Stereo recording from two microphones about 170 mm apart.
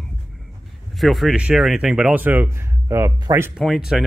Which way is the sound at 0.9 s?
Centre (ahead or behind).